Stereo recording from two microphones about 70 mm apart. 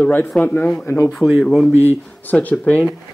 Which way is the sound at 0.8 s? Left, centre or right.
Left.